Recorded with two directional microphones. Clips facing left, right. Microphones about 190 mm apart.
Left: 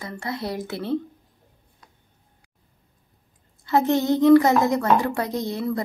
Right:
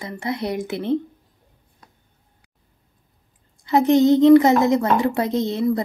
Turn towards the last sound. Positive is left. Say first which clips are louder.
# right 6 dB
turn(degrees=-20)  # may be behind; listen again after turning